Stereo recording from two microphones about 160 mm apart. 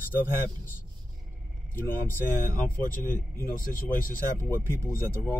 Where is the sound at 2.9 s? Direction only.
55° left (ahead or behind).